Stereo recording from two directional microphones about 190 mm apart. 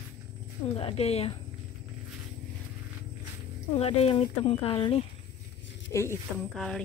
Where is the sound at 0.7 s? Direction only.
30° left (ahead or behind).